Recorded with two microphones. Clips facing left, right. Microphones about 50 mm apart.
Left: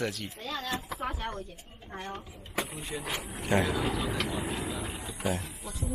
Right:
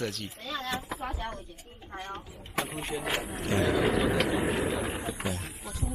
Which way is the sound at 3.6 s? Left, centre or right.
Right.